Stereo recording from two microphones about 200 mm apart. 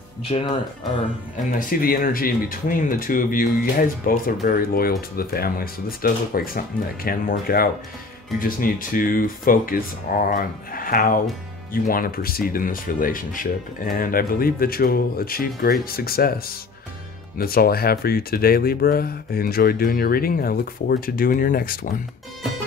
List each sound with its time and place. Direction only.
0.2 s speech: 25° left (ahead or behind)
1.4 s speech: 45° left (ahead or behind)
17.4 s speech: 50° left (ahead or behind)